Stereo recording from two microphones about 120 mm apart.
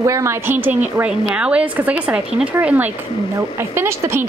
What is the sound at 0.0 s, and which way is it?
A woman's voice, 25° right (ahead or behind).